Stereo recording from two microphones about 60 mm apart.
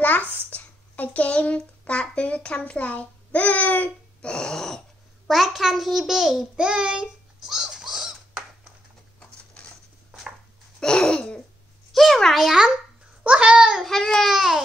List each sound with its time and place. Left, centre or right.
0.0 s a sound: left
0.5 s speech: left
4.2 s a sound: centre
5.3 s a child's voice: centre
7.4 s bird: centre
10.8 s babbling: centre
11.9 s a child's voice: centre
13.2 s a child's voice: centre
13.8 s a sound: centre
14.3 s a child's voice: centre